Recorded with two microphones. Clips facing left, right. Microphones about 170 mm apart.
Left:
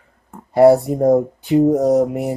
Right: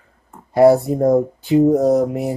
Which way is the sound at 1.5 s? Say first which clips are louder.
Even; centre (ahead or behind).